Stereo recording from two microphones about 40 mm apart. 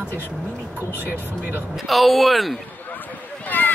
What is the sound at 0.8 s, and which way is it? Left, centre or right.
Speech, right.